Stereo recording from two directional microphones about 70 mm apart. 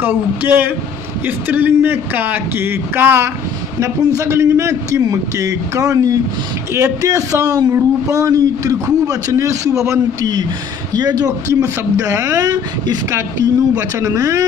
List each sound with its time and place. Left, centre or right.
0.0 s a man's voice: right
3.8 s a man's voice: right
5.0 s a man's voice: right
7.7 s a man's voice: right
11.0 s speech: right
11.4 s a man's voice: right
14.0 s a man's voice: right